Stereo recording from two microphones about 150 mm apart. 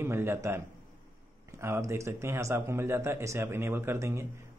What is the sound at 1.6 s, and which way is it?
Speech, 15° right (ahead or behind).